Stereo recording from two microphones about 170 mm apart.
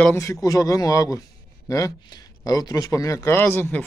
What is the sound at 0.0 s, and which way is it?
A man's voice, 15° left (ahead or behind).